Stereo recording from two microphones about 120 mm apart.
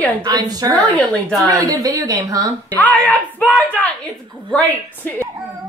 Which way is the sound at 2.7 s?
15° left (ahead or behind).